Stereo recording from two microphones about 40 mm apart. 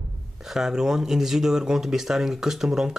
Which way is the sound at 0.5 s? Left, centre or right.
Centre.